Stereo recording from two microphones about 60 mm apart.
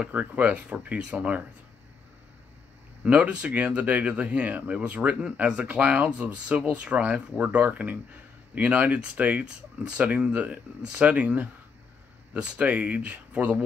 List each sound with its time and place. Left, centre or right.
0.1 s speech: right
3.0 s speech: right
12.4 s speech: right